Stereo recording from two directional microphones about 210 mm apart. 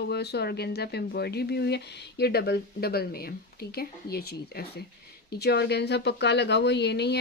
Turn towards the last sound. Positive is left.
turn(degrees=50)  # may be behind; listen again after turning